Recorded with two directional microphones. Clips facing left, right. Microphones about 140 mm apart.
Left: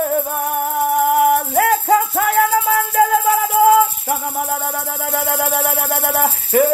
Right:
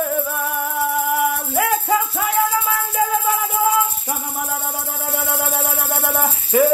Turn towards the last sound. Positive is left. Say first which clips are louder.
# left 1 dB
turn(degrees=50)  # may be behind; listen again after turning